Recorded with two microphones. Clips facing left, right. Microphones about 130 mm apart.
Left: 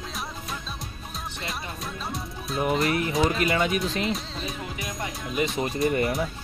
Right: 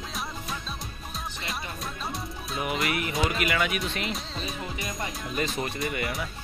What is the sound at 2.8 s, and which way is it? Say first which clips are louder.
Speech: left 4 dB; 30° left (ahead or behind).